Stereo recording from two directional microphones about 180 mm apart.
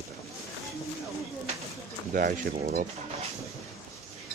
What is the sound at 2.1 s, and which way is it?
Speech, 50° right (ahead or behind).